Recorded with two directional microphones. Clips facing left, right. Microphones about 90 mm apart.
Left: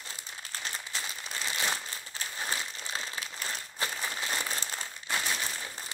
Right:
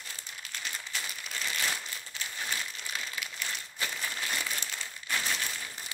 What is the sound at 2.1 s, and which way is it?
Crumpling, 30° left (ahead or behind).